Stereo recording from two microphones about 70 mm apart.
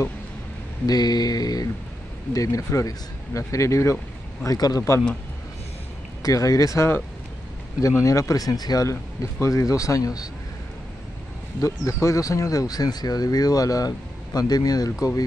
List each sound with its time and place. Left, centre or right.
0.8 s a sound: left
2.3 s speech: left
4.6 s speech: left
6.2 s speech: left
8.8 s speech: left
11.6 s speech: left